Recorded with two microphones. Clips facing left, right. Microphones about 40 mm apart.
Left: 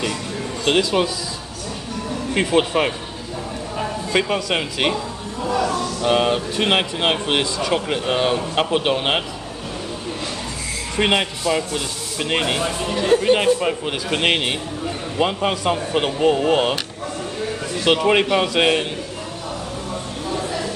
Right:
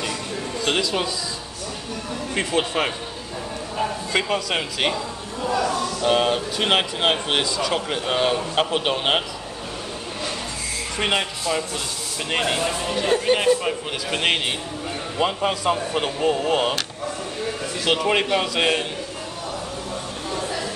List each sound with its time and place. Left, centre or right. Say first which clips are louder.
0.7 s a man's voice: left 5 dB; centre
2.4 s speech: left 4 dB; left
2.8 s a man's voice: left 3 dB; centre
11.0 s speech: left 4 dB; centre
12.6 s a man's voice: left 2 dB; centre
17.8 s a man's voice: left 4 dB; centre